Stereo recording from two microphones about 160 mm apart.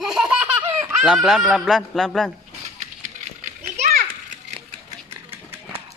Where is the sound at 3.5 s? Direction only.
50° right (ahead or behind).